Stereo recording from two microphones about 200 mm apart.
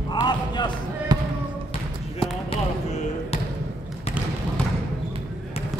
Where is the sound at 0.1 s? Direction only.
20° left (ahead or behind).